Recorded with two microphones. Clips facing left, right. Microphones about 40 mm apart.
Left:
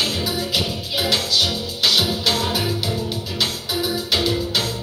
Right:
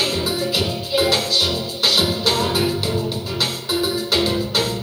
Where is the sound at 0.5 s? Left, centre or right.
Right.